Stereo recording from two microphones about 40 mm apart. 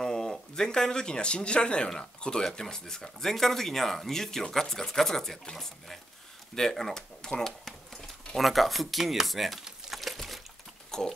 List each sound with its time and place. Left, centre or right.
0.0 s speech: centre
6.5 s speech: centre
8.4 s speech: centre
9.9 s a sound: centre
10.9 s pig: centre